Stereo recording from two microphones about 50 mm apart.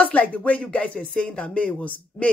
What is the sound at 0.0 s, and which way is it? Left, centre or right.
Speech, left.